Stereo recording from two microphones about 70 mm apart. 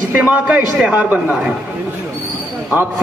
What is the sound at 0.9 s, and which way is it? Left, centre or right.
Speech, centre.